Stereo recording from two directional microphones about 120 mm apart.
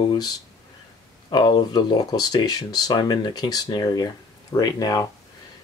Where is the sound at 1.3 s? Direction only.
40° left (ahead or behind).